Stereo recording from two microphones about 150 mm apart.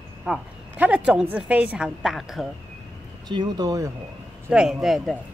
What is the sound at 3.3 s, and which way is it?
Speech, 25° right (ahead or behind).